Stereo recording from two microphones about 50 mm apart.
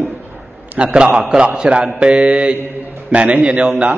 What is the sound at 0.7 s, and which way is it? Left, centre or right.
Mantra, right.